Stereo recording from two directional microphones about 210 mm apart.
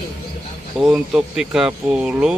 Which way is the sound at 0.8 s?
5° right (ahead or behind).